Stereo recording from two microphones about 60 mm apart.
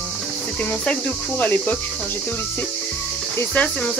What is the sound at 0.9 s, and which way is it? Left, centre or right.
Cricket, left.